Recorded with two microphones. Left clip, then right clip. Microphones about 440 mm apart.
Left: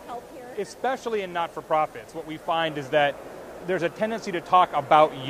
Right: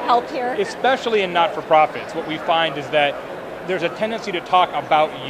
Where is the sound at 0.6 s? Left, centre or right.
Left.